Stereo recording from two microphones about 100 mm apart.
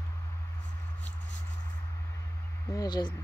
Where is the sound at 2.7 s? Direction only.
40° left (ahead or behind).